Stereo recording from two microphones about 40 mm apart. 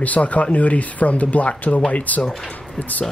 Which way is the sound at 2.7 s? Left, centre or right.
Left.